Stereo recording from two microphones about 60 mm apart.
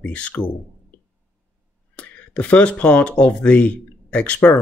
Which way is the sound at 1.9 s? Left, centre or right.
Left.